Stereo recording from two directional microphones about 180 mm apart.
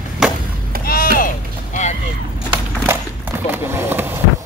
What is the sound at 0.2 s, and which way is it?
Chop, 5° right (ahead or behind).